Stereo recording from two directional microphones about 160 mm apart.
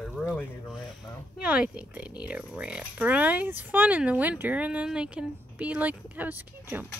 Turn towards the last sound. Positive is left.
turn(degrees=-10)  # may be behind; listen again after turning